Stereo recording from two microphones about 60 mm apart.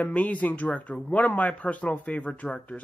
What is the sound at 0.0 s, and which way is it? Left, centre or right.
Speech, left.